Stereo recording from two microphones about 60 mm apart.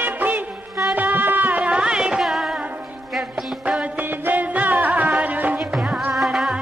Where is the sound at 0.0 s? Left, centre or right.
Right; by 2.4 s centre.